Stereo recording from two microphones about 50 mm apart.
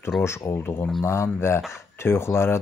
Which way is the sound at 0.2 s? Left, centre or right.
Left.